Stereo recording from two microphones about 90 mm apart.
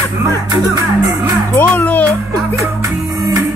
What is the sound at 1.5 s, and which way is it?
Music, 15° left (ahead or behind).